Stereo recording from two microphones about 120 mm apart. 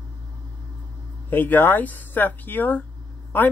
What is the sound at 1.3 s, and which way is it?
A woman's voice, 15° left (ahead or behind).